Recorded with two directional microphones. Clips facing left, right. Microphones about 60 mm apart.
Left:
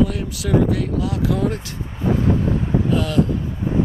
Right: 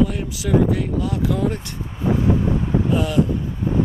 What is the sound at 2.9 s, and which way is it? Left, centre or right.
Speech, centre.